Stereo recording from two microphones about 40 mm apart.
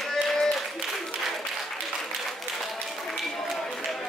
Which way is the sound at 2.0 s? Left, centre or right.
Centre.